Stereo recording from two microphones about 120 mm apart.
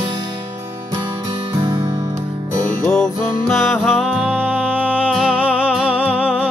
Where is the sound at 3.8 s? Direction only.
5° right (ahead or behind).